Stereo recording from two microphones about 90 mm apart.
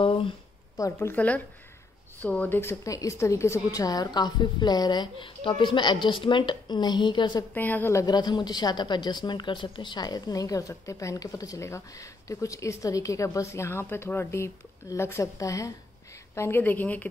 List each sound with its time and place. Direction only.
0.0 s a sound: 90° left
0.9 s speech: 20° left (ahead or behind)
2.6 s a woman's voice: 35° left (ahead or behind); by 7.4 s 55° left (ahead or behind)
7.5 s a woman's voice: 20° left (ahead or behind)
7.9 s a woman's voice: 45° left (ahead or behind)
16.3 s a woman's voice: 25° left (ahead or behind)